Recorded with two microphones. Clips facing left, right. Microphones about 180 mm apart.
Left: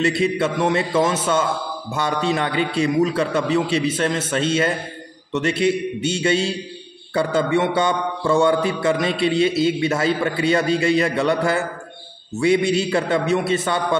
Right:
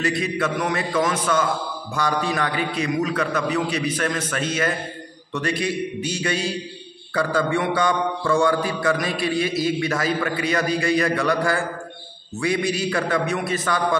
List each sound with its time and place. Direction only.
0.0 s a man's voice: 30° left (ahead or behind)